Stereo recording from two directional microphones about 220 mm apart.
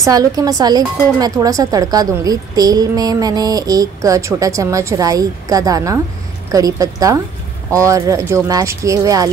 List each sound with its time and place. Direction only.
0.0 s speech: 15° right (ahead or behind)